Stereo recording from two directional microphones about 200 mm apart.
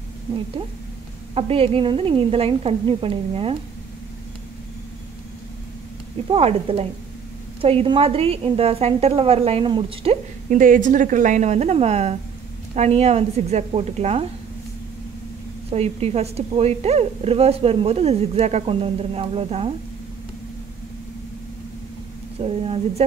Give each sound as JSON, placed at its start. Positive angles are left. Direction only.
{"t": 1.3, "sound": "a woman's voice", "side_deg": -30}
{"t": 6.2, "sound": "a woman's voice", "side_deg": -25}
{"t": 10.5, "sound": "a woman's voice", "side_deg": -40}
{"t": 15.7, "sound": "a woman's voice", "side_deg": -30}
{"t": 22.4, "sound": "a woman's voice", "side_deg": -30}